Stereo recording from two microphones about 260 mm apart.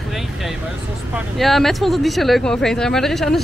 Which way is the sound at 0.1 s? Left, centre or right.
Centre.